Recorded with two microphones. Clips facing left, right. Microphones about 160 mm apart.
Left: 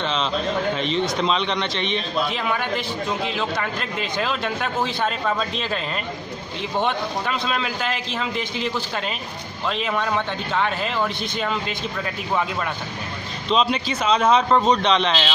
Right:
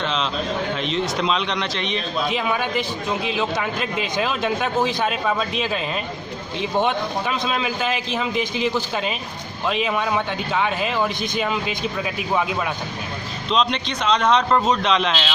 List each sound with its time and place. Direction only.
0.0 s a man's voice: centre (ahead or behind)
2.2 s speech: 15° right (ahead or behind)
6.8 s speech: 15° right (ahead or behind)
13.5 s a man's voice: 5° left (ahead or behind)